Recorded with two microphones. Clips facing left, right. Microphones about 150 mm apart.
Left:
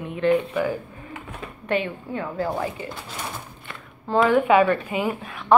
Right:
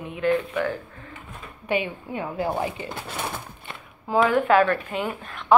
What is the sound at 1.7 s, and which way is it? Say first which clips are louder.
A woman's voice: left 1 dB; 10° right (ahead or behind).